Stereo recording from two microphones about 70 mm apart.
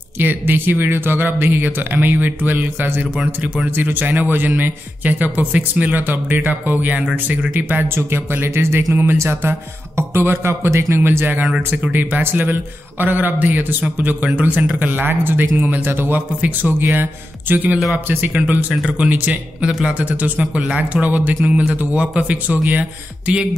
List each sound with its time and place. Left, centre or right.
0.2 s a man's voice: right
18.3 s a man's voice: centre